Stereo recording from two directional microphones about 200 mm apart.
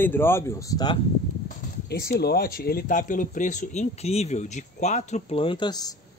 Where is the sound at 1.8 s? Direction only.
55° left (ahead or behind).